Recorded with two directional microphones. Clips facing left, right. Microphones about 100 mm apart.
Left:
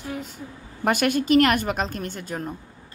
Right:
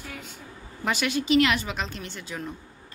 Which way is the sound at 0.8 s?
50° left (ahead or behind).